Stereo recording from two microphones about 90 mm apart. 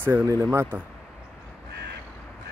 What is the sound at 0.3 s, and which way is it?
Speech, 35° right (ahead or behind).